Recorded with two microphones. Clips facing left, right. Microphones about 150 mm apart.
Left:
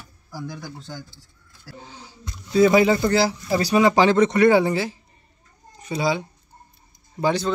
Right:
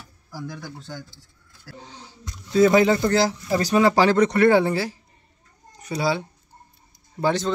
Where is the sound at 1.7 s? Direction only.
5° left (ahead or behind).